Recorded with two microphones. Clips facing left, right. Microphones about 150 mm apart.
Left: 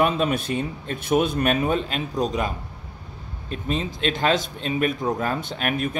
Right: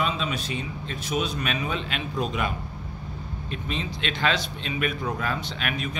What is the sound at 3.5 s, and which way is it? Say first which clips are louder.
A man's voice: left 6 dB; 40° left (ahead or behind).